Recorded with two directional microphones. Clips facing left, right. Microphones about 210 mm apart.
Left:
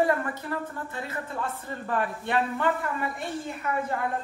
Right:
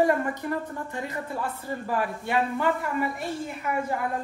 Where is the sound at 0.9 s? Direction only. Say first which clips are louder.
Right 3 dB; 15° right (ahead or behind).